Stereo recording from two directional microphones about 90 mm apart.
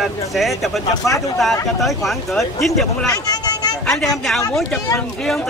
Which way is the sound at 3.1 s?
50° left (ahead or behind).